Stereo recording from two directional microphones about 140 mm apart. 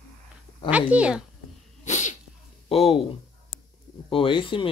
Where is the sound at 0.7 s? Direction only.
10° right (ahead or behind).